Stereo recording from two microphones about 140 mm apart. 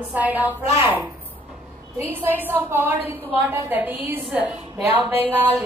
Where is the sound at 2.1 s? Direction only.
15° right (ahead or behind).